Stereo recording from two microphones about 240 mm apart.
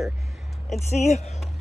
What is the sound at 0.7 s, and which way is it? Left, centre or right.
Speech, left.